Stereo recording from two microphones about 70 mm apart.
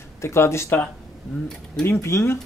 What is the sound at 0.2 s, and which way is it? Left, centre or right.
Speech, left.